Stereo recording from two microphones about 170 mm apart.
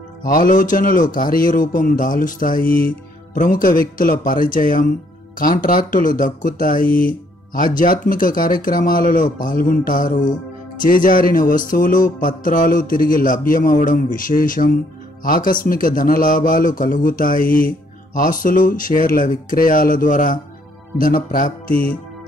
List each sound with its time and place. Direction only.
0.2 s a man's voice: 55° left (ahead or behind)